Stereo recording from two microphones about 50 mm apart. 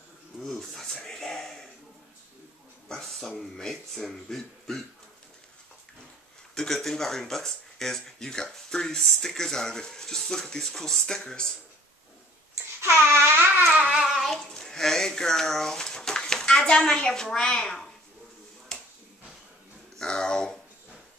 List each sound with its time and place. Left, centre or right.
0.4 s dog: centre
1.0 s a sound: centre
2.9 s speech: centre
6.5 s speech: centre
12.8 s babbling: right
13.7 s child singing: centre
14.0 s child singing: centre
14.3 s a sound: centre
20.0 s speech: centre